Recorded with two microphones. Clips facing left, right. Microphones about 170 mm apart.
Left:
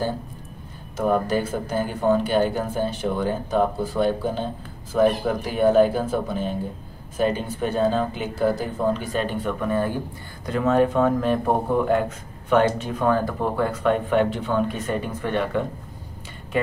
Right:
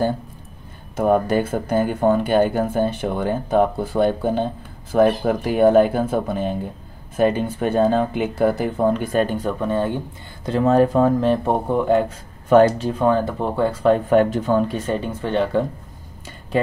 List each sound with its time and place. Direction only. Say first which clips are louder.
0.9 s speech: right 4 dB; 55° right (ahead or behind); by 12.0 s 25° right (ahead or behind)
12.4 s speech: right 6 dB; 35° right (ahead or behind)
14.9 s speech: right 3 dB; 30° right (ahead or behind)